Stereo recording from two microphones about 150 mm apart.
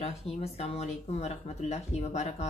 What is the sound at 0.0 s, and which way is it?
A woman's voice, 45° left (ahead or behind).